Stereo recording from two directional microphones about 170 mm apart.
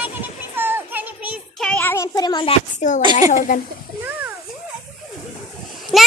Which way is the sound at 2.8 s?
45° left (ahead or behind).